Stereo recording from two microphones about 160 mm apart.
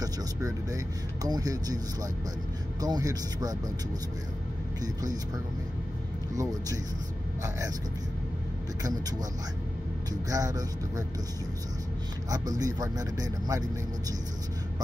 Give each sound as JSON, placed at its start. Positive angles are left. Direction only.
{"t": 0.0, "sound": "speech", "side_deg": -20}
{"t": 2.8, "sound": "speech", "side_deg": -20}
{"t": 6.3, "sound": "speech", "side_deg": -20}
{"t": 10.3, "sound": "speech", "side_deg": -20}
{"t": 12.3, "sound": "speech", "side_deg": -25}